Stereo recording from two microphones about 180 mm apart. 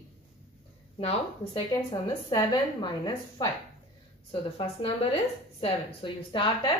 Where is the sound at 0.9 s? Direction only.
30° left (ahead or behind).